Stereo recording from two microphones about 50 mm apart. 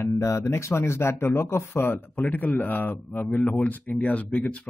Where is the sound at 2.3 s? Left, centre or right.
Left.